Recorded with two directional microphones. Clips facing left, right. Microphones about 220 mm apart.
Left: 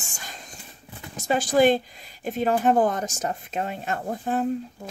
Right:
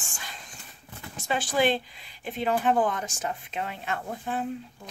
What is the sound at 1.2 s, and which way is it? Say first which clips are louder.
Speech: left 6 dB; 40° left (ahead or behind).